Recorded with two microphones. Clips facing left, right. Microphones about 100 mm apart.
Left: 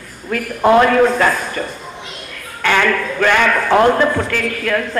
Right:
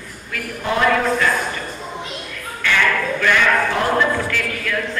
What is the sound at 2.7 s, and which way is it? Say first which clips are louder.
A man's voice: left 3 dB; 55° left (ahead or behind).